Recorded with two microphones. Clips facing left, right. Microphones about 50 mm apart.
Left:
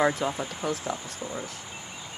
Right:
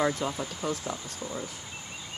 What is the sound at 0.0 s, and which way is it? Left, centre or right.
Speech, centre.